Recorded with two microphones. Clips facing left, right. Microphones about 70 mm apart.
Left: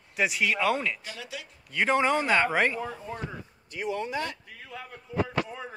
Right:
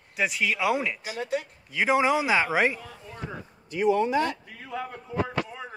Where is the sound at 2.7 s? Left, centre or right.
Left.